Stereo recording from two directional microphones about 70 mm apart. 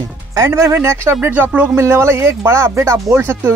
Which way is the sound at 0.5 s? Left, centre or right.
Right.